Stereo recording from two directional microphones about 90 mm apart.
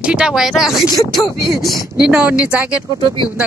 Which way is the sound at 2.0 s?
10° right (ahead or behind).